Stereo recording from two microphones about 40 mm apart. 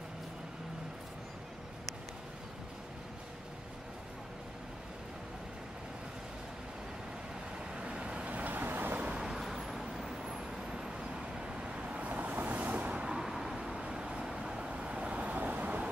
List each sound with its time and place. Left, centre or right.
7.7 s vehicle: right
8.3 s vehicle: right
8.5 s vehicle: right
9.2 s vehicle: centre; by 13.0 s right
13.0 s vehicle: centre
13.8 s vehicle: right
14.7 s vehicle: right
15.3 s vehicle: right